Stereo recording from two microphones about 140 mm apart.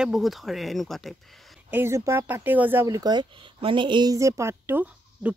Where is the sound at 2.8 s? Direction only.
25° right (ahead or behind); by 5.3 s 10° right (ahead or behind).